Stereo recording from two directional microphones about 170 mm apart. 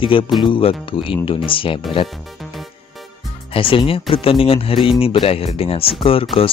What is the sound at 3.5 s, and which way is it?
Speech, 30° left (ahead or behind).